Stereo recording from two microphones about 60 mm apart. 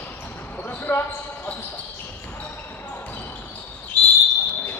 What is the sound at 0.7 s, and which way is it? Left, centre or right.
Basketball bounce, left.